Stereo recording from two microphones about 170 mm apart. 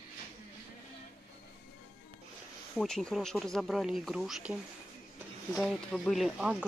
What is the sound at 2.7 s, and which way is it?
Speech, 5° left (ahead or behind).